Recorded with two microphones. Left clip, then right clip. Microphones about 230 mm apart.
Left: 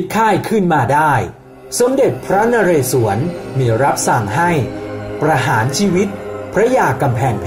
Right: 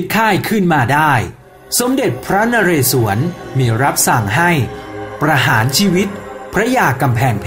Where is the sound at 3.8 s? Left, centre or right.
Right.